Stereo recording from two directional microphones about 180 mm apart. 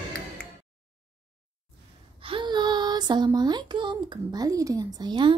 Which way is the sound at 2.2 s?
25° right (ahead or behind).